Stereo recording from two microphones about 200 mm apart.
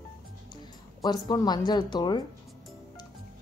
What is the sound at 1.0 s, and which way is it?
Speech, 20° left (ahead or behind).